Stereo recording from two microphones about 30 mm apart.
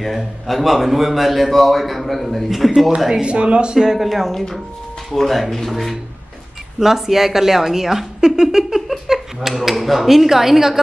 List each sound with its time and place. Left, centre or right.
0.0 s a man's voice: centre
3.3 s speech: right
3.7 s a woman's voice: centre
4.0 s a man's voice: centre
4.3 s a man's voice: centre
6.8 s a woman's voice: centre
8.8 s a sound: centre
9.5 s a woman's voice: centre